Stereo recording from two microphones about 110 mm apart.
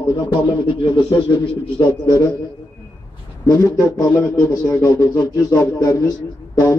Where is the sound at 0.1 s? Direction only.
45° left (ahead or behind).